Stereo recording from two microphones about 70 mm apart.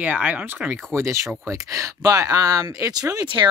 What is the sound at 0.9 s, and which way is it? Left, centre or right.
Speech, right.